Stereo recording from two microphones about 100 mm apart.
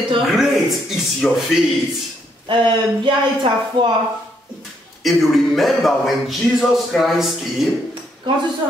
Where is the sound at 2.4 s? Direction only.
55° right (ahead or behind).